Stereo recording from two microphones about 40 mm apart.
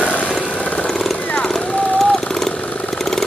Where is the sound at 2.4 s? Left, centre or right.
Centre.